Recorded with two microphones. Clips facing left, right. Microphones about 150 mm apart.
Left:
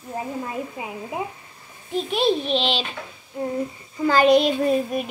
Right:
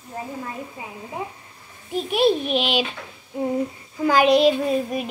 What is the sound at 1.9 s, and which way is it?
Speech, 10° right (ahead or behind).